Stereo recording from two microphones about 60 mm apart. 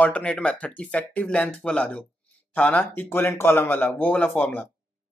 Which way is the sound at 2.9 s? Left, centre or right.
Left.